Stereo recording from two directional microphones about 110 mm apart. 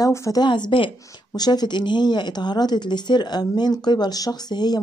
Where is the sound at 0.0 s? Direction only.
30° left (ahead or behind).